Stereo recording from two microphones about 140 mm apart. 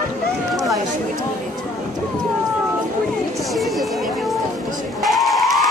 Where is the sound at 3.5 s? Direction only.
Centre (ahead or behind).